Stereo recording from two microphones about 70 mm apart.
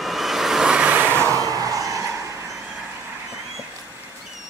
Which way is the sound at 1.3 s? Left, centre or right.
Right.